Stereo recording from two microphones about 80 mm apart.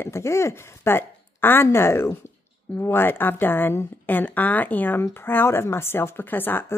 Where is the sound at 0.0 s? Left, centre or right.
Left.